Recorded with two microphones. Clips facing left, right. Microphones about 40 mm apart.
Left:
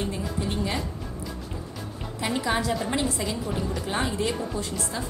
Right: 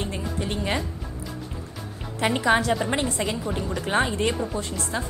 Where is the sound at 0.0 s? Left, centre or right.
Right.